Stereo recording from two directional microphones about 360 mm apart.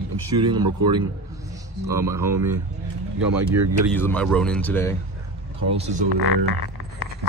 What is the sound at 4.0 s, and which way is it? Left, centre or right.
Speech, centre.